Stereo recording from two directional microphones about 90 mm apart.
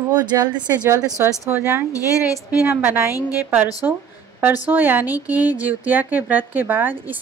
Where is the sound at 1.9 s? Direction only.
40° left (ahead or behind).